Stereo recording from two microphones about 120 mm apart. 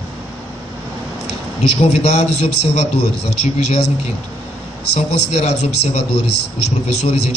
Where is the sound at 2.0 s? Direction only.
60° left (ahead or behind).